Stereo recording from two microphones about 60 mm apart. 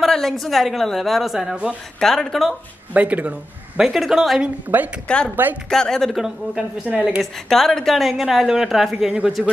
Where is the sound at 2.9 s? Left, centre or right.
Right.